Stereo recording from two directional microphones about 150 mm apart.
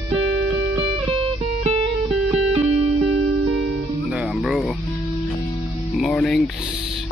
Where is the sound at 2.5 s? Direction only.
45° right (ahead or behind).